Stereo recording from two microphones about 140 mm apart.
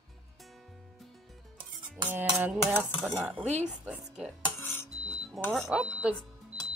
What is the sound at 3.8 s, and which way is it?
Speech, 10° right (ahead or behind).